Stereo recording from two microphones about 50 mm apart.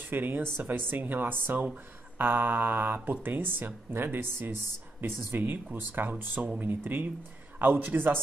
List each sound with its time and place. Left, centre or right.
0.1 s speech: right